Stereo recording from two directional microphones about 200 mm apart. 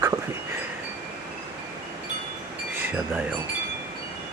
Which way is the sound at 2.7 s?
10° right (ahead or behind).